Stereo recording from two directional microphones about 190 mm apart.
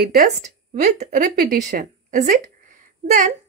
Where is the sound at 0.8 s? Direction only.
40° right (ahead or behind).